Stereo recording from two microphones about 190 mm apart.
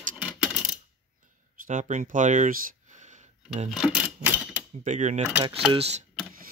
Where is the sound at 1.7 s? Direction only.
40° right (ahead or behind).